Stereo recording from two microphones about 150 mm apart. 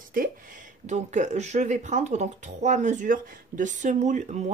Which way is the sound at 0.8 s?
50° right (ahead or behind).